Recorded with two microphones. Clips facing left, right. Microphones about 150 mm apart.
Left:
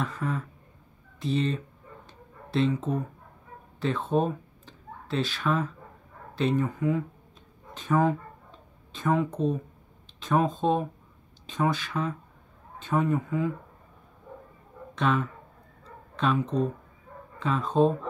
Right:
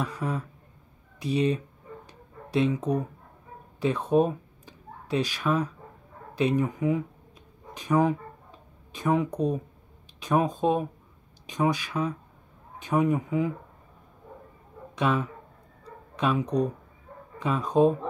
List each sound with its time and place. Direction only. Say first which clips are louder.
0.0 s a sound: even; 10° right (ahead or behind)
1.2 s speech: right 2 dB; 15° right (ahead or behind)
2.0 s a sound: right 1 dB; 10° right (ahead or behind)
3.8 s speech: right 3 dB; 15° right (ahead or behind)
7.7 s a sound: right 1 dB; 15° right (ahead or behind)
10.2 s speech: right 1 dB; 10° right (ahead or behind)
15.0 s speech: even; 10° right (ahead or behind)
15.8 s bow-wow: even; 15° right (ahead or behind)
17.4 s speech: right 1 dB; 15° right (ahead or behind)